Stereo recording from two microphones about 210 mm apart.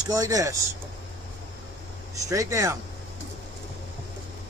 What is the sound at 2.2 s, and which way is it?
Speech, 15° right (ahead or behind).